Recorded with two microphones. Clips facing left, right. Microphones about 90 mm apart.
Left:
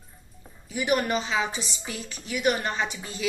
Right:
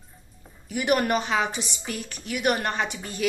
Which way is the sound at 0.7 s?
55° right (ahead or behind).